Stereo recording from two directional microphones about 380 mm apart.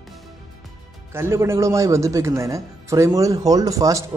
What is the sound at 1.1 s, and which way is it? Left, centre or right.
Speech, centre.